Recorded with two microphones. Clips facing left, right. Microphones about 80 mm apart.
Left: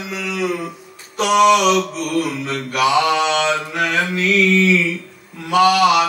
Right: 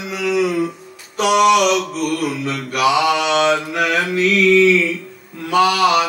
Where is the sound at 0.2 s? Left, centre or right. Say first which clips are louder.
Right 6 dB; centre.